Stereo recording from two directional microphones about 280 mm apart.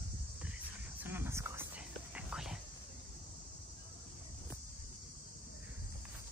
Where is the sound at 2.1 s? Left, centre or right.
Centre.